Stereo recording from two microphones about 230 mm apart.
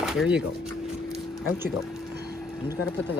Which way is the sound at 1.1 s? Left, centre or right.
Centre.